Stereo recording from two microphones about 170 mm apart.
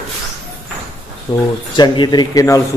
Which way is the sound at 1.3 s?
20° left (ahead or behind).